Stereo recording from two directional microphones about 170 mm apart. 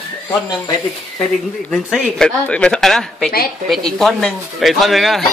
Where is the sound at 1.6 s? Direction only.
5° left (ahead or behind).